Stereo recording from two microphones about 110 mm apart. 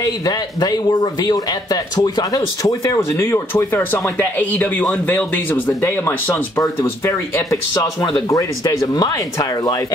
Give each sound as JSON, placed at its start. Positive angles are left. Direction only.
{"t": 0.0, "sound": "speech", "side_deg": 35}